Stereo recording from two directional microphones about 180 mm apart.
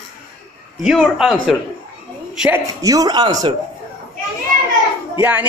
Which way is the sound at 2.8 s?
20° right (ahead or behind).